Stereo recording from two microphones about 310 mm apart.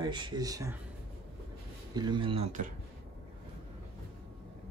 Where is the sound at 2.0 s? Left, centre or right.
Centre.